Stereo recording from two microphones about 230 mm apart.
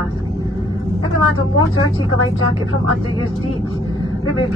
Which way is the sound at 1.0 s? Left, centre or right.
Left.